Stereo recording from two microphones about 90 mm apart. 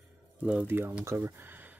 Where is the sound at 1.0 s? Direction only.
25° right (ahead or behind).